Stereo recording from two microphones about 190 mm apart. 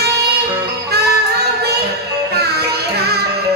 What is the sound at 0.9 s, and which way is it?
Music, 60° right (ahead or behind).